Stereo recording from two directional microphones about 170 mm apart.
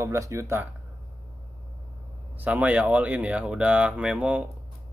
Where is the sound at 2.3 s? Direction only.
10° right (ahead or behind).